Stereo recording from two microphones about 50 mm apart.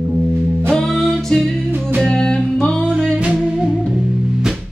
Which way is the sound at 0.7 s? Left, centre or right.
Centre.